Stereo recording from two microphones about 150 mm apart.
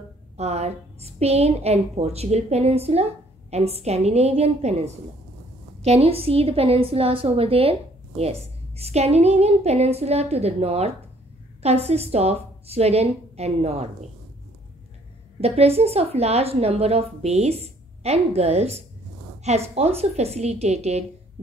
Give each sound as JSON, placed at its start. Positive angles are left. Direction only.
{"t": 0.4, "sound": "a woman's voice", "side_deg": -45}
{"t": 15.4, "sound": "a woman's voice", "side_deg": -45}